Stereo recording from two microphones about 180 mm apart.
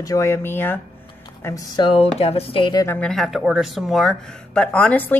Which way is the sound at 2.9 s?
5° left (ahead or behind).